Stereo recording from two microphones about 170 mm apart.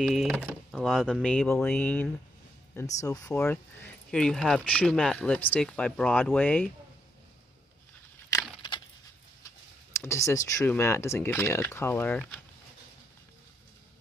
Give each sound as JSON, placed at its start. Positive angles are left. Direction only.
{"t": 0.0, "sound": "speech", "side_deg": -5}
{"t": 3.0, "sound": "speech", "side_deg": 20}
{"t": 3.3, "sound": "speech", "side_deg": 5}
{"t": 8.3, "sound": "keys jangling", "side_deg": 25}
{"t": 10.0, "sound": "speech", "side_deg": 15}